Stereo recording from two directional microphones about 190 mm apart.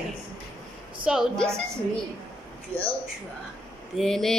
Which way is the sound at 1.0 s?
Centre (ahead or behind).